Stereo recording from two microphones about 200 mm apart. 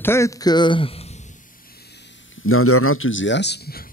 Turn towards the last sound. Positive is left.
turn(degrees=50)  # may be behind; listen again after turning